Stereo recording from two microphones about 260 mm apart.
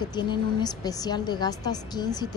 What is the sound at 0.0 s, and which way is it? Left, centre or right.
A woman's voice, centre.